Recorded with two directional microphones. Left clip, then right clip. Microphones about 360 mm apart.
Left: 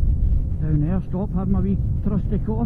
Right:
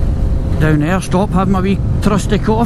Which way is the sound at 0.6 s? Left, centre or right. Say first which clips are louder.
Right 13 dB; centre.